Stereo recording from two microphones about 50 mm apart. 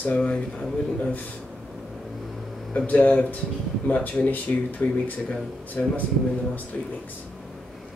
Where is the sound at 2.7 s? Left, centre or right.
Left.